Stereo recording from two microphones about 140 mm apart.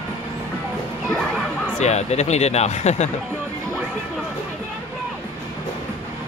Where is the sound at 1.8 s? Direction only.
50° left (ahead or behind).